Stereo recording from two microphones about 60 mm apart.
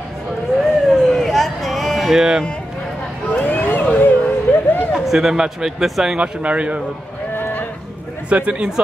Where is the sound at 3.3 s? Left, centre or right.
Left.